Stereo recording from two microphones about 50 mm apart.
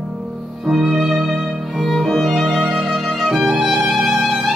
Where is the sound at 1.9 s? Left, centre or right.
Centre.